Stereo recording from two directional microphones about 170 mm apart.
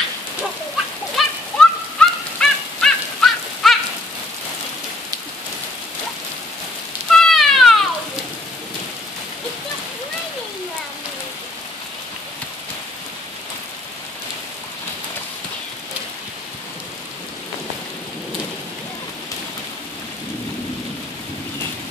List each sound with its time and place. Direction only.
1.1 s a sound: 5° left (ahead or behind)
2.4 s goose: 5° left (ahead or behind)
7.1 s cat: centre (ahead or behind)